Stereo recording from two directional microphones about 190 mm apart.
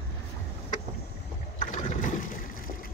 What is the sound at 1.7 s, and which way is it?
Boat, 40° left (ahead or behind).